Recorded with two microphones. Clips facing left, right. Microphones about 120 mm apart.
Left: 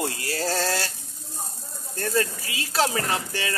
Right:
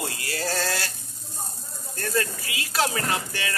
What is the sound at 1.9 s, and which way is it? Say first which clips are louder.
Speech: left 2 dB; 25° left (ahead or behind).